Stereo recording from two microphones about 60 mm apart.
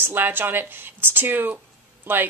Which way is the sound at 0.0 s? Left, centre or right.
Right.